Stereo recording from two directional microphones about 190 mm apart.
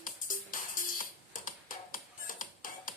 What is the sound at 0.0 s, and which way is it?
Music, 45° left (ahead or behind).